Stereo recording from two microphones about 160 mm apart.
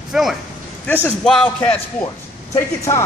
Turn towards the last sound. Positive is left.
turn(degrees=20)  # may be behind; listen again after turning